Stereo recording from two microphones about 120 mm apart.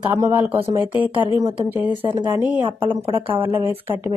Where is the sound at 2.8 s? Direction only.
45° right (ahead or behind).